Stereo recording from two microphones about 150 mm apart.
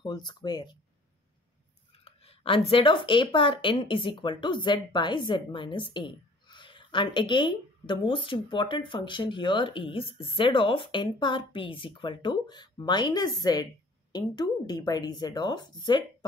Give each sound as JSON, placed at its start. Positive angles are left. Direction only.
{"t": 0.0, "sound": "a woman's voice", "side_deg": 30}
{"t": 2.0, "sound": "a woman's voice", "side_deg": 40}